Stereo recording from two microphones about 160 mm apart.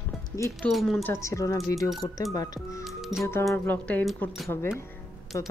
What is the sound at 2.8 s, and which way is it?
Music, centre (ahead or behind).